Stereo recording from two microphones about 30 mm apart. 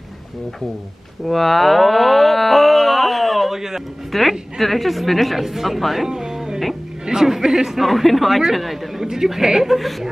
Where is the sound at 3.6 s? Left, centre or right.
Centre.